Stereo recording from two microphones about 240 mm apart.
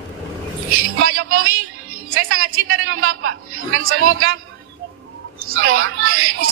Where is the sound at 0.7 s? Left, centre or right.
Right.